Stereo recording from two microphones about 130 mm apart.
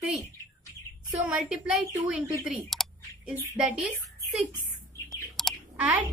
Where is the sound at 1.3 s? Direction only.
5° right (ahead or behind).